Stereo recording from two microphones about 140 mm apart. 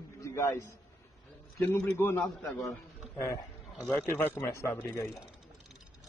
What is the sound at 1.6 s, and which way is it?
Speech, 15° left (ahead or behind).